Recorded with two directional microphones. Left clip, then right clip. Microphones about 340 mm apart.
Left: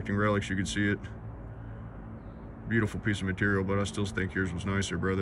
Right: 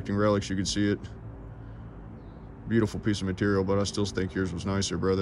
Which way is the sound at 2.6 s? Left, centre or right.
Centre.